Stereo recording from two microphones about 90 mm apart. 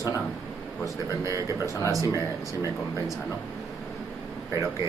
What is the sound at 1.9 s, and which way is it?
Speech, 40° right (ahead or behind).